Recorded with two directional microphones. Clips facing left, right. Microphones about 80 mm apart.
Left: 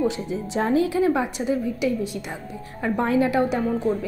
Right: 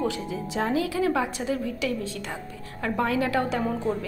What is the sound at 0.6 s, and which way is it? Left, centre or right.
A woman's voice, left.